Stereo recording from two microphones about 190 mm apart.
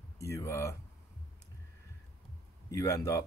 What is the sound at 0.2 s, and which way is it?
Speech, 15° left (ahead or behind).